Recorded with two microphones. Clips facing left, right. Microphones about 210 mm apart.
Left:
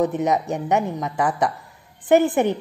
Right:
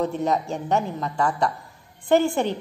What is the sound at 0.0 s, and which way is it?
A woman's voice, 20° left (ahead or behind).